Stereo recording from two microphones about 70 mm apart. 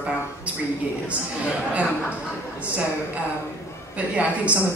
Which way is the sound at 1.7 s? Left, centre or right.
Centre.